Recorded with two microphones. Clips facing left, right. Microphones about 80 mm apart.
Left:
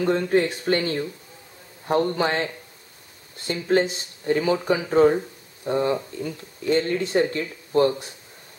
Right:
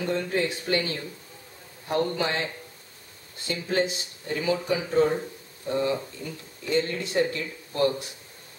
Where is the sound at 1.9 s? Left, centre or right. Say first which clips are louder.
Left 4 dB; left.